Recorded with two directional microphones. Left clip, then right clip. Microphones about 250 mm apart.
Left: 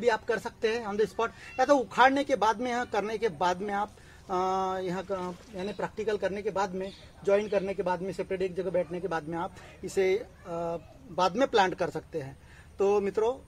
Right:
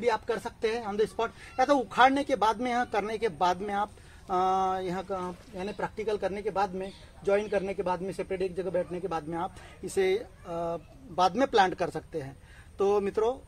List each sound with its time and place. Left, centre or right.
0.0 s speech: centre